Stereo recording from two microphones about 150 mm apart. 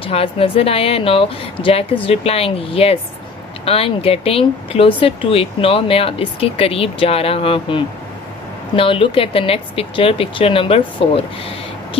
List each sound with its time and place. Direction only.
0.0 s speech: 40° left (ahead or behind)